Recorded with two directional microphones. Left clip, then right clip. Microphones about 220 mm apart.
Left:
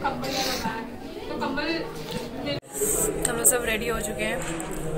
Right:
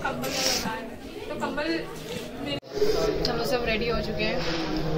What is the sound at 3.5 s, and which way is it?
Speech, centre (ahead or behind).